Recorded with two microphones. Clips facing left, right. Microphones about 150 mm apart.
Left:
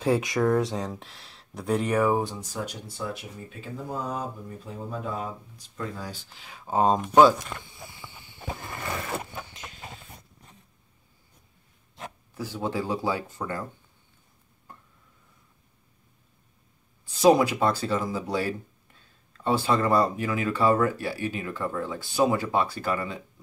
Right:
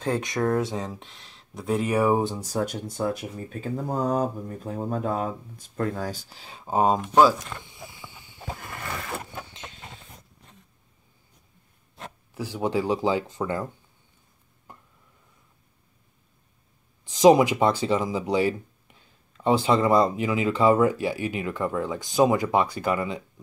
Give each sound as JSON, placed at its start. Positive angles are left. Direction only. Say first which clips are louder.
{"t": 0.0, "sound": "speech", "louder": "left 2 dB", "side_deg": 5}
{"t": 2.0, "sound": "speech", "louder": "right 2 dB", "side_deg": -15}
{"t": 2.5, "sound": "speech", "louder": "right 7 dB", "side_deg": -50}
{"t": 6.6, "sound": "speech", "louder": "right 1 dB", "side_deg": -10}
{"t": 7.0, "sound": "speech", "louder": "left 3 dB", "side_deg": 0}
{"t": 9.5, "sound": "a sound", "louder": "right 1 dB", "side_deg": -25}
{"t": 12.4, "sound": "speech", "louder": "right 4 dB", "side_deg": -15}
{"t": 17.1, "sound": "speech", "louder": "right 3 dB", "side_deg": -15}